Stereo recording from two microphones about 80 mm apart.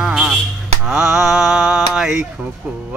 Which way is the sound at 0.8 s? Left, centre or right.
Centre.